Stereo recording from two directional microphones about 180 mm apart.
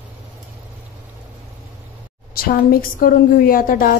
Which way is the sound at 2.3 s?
55° left (ahead or behind).